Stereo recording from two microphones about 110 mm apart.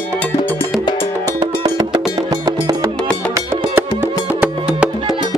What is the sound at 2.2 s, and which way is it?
Music, 30° right (ahead or behind).